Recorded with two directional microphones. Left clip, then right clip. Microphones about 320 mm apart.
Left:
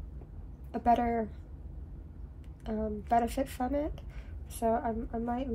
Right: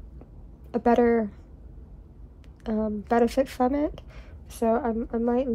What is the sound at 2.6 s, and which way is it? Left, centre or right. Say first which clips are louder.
A woman's voice: right 7 dB; right.